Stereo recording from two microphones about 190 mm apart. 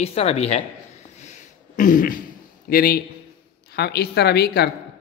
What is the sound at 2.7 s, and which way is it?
Speech, 50° left (ahead or behind).